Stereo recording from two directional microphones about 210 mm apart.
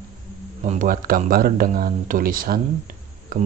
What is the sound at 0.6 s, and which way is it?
Speech, 35° right (ahead or behind).